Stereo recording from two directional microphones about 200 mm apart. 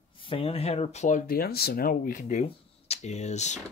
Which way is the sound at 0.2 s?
25° left (ahead or behind).